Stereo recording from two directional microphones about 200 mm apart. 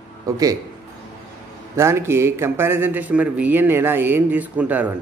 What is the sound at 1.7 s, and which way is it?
Speech, 15° right (ahead or behind).